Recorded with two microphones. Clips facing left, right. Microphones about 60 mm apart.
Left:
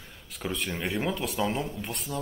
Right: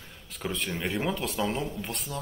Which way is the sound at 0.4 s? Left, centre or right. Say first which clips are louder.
Even; centre.